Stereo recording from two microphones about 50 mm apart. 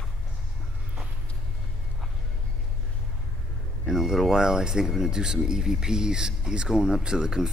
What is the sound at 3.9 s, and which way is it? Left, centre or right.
Speech, centre.